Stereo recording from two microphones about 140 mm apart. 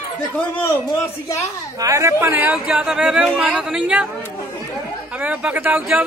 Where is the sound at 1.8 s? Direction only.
20° right (ahead or behind); by 4.1 s 5° right (ahead or behind).